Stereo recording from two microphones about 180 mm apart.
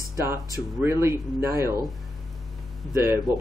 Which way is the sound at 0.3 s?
15° right (ahead or behind).